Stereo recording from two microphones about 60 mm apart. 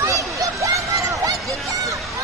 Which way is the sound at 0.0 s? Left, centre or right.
Right.